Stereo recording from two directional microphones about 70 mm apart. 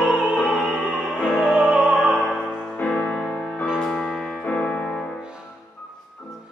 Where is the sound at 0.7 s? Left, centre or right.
Centre.